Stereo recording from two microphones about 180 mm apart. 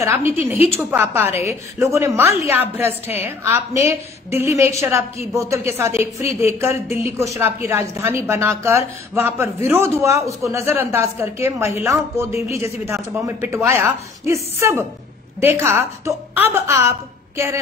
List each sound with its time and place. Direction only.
0.0 s a woman's voice: 15° right (ahead or behind)
12.4 s speech: 35° left (ahead or behind)
12.8 s a woman's voice: 15° right (ahead or behind)